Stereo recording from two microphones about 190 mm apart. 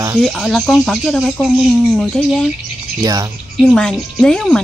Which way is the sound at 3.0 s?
20° right (ahead or behind).